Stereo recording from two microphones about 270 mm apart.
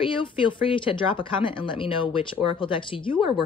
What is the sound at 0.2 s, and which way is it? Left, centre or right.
Speech, centre.